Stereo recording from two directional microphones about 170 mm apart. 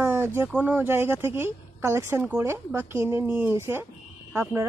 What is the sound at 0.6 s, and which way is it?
Speech, 10° right (ahead or behind).